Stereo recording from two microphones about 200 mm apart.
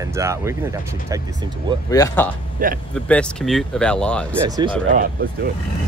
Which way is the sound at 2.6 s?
45° right (ahead or behind).